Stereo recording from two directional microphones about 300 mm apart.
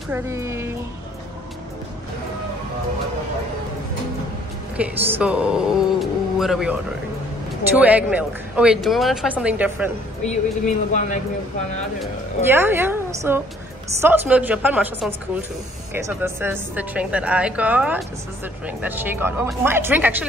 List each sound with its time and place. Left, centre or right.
0.1 s speech: centre
4.7 s a woman's voice: centre
10.2 s speech: left
12.0 s a woman's voice: centre